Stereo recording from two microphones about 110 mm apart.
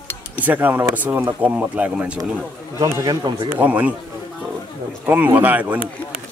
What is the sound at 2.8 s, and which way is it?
Speech, 30° right (ahead or behind).